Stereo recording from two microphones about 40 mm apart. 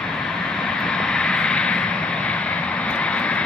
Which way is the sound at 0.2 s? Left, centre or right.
Left.